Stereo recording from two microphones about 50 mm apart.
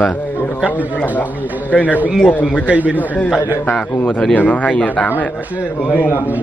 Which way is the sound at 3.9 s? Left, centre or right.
Left.